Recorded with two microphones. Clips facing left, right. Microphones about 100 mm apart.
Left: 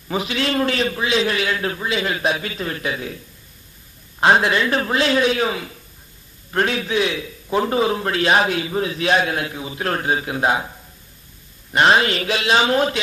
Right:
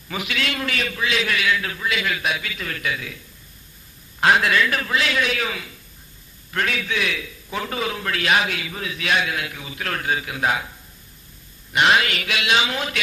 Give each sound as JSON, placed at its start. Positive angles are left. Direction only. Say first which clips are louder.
{"t": 0.1, "sound": "a man's voice", "louder": "left 5 dB", "side_deg": 30}
{"t": 4.2, "sound": "a man's voice", "louder": "left 2 dB", "side_deg": 30}
{"t": 11.7, "sound": "a man's voice", "louder": "left 3 dB", "side_deg": 35}